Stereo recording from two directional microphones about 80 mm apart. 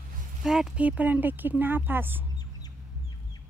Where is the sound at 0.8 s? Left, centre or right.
Centre.